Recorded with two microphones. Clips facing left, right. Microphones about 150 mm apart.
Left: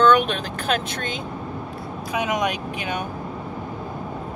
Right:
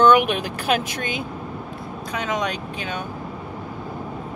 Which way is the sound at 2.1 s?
10° left (ahead or behind).